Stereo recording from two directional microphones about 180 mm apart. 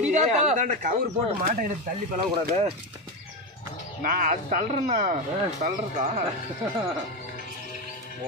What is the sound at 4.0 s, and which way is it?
Speech, 50° right (ahead or behind).